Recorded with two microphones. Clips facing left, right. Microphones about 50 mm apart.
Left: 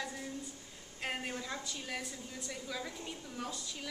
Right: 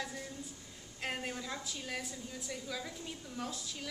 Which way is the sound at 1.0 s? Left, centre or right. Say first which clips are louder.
Even; centre.